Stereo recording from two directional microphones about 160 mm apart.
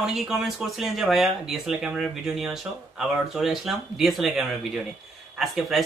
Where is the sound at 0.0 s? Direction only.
Centre (ahead or behind).